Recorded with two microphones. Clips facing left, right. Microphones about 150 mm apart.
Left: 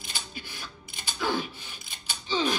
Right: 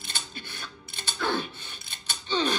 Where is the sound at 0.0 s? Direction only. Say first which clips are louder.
Even; 10° left (ahead or behind).